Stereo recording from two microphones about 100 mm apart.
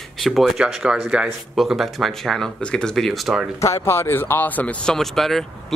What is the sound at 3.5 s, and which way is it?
A man's voice, 30° left (ahead or behind).